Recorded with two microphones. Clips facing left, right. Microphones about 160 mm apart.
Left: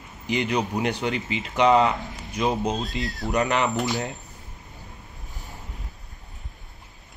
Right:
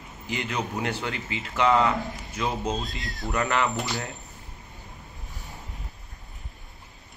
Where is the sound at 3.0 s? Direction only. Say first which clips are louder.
Left 5 dB; centre (ahead or behind).